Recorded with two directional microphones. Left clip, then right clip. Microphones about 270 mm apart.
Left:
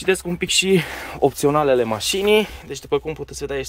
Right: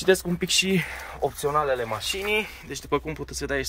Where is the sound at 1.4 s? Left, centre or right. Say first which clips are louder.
Left 6 dB; left.